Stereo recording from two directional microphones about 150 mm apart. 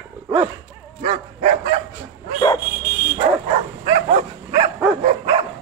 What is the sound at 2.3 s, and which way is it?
Dog, 30° left (ahead or behind).